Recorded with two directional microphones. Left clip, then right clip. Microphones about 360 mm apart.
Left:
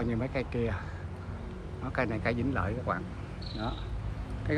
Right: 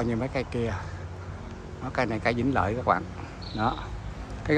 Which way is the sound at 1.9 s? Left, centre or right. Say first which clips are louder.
Right 5 dB; centre.